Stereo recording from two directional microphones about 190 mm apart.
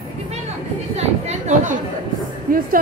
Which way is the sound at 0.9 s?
35° right (ahead or behind).